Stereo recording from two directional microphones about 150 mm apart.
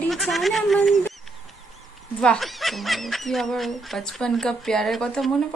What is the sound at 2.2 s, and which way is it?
Speech, 5° left (ahead or behind).